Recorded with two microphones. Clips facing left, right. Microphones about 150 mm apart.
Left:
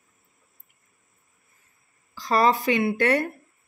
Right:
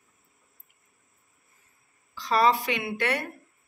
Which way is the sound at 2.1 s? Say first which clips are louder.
Left 2 dB; 40° left (ahead or behind).